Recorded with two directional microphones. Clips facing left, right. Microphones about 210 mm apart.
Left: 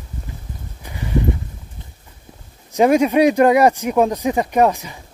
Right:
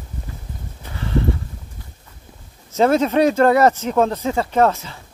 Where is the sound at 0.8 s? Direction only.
15° left (ahead or behind).